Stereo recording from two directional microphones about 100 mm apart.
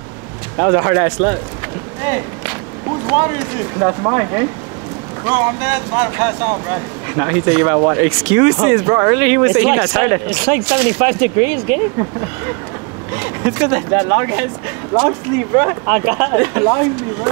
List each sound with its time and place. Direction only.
0.6 s speech: 30° right (ahead or behind)
8.1 s speech: 15° right (ahead or behind); by 17.3 s 30° right (ahead or behind)